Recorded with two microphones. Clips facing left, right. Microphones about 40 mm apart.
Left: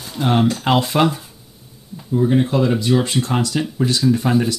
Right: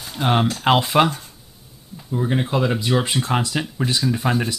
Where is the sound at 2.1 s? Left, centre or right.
Centre.